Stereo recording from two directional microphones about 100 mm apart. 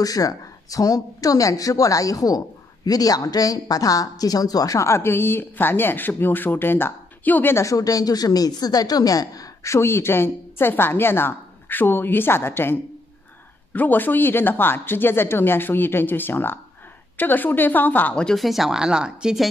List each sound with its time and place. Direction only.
0.0 s a woman's voice: 35° left (ahead or behind)
13.7 s a woman's voice: 20° left (ahead or behind); by 19.4 s 5° right (ahead or behind)